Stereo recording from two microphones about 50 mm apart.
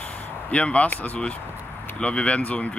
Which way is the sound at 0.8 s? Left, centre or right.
Left.